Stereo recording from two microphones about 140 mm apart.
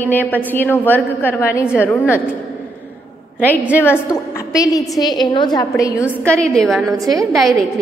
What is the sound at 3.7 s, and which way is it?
A woman's voice, 15° left (ahead or behind).